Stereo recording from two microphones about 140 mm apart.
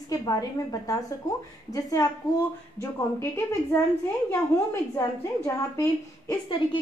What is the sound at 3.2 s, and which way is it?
Speech, 15° left (ahead or behind).